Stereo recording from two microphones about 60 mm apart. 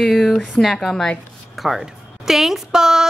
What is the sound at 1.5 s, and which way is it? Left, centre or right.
A woman's voice, centre.